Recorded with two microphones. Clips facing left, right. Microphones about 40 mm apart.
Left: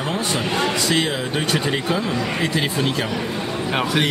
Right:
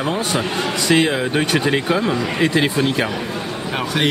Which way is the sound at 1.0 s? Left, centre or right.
Right.